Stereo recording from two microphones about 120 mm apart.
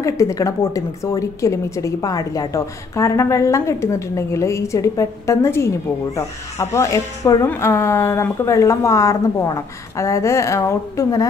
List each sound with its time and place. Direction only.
0.0 s a woman's voice: 25° left (ahead or behind)